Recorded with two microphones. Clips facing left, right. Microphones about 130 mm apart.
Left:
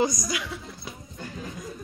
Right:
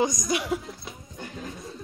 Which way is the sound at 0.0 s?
20° right (ahead or behind).